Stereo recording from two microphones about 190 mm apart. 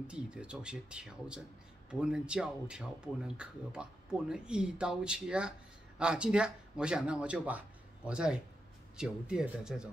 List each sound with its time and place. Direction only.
0.0 s speech: 5° right (ahead or behind)